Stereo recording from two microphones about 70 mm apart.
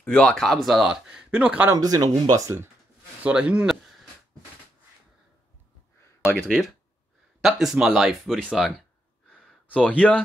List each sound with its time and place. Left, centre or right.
0.0 s speech: centre
1.8 s speech: right
2.4 s speech: right
3.3 s speech: centre
6.2 s speech: centre
9.7 s speech: centre